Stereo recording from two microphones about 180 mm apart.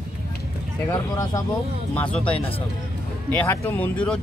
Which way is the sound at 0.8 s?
20° left (ahead or behind).